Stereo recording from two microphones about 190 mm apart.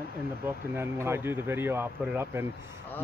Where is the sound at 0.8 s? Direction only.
15° right (ahead or behind).